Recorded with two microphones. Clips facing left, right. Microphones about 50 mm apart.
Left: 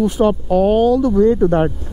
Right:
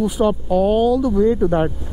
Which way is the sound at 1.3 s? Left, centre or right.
Centre.